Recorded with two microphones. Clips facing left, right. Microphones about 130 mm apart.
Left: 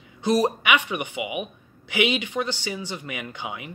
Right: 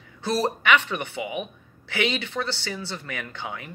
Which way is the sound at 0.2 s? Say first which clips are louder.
Left 3 dB; 15° left (ahead or behind).